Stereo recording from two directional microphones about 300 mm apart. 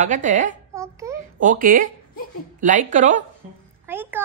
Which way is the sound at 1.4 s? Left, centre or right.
Right.